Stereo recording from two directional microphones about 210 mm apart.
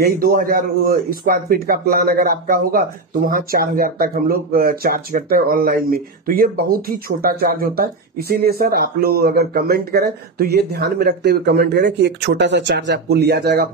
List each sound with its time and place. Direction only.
0.0 s speech: 45° right (ahead or behind)